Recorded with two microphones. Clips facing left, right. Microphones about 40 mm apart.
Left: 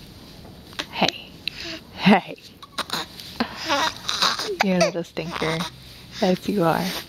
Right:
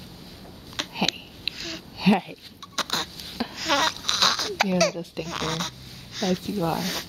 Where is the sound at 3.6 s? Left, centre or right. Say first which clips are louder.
Right 1 dB; centre.